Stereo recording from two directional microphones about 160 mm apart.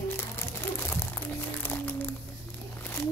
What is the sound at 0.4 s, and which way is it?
Music, 15° left (ahead or behind).